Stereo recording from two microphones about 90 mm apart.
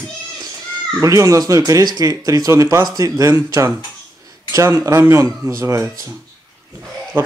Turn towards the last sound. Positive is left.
turn(degrees=-25)  # may be behind; listen again after turning